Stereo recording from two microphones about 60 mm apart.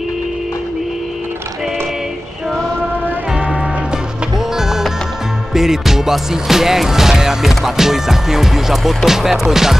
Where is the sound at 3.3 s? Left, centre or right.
Right.